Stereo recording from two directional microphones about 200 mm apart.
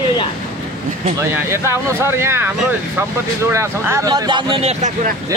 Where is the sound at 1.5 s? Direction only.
10° right (ahead or behind); by 4.9 s 30° right (ahead or behind).